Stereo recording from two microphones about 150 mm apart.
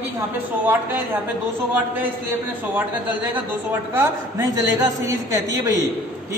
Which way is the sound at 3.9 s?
15° right (ahead or behind).